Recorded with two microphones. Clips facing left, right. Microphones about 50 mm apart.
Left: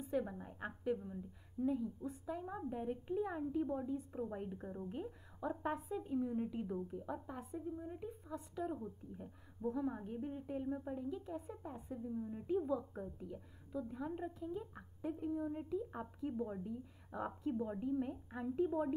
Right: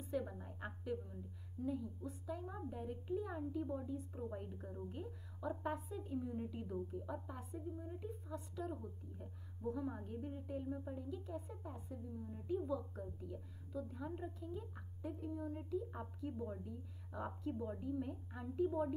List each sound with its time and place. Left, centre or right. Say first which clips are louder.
0.1 s a woman's voice: left 3 dB; centre